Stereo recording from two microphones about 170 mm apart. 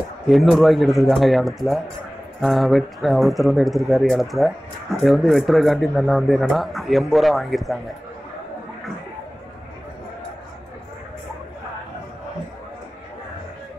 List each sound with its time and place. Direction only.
0.3 s a man's voice: centre (ahead or behind)